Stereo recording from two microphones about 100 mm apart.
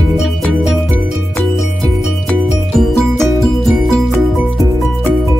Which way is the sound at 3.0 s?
5° left (ahead or behind).